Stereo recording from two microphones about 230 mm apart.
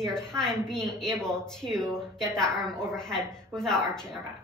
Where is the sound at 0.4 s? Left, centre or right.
Centre.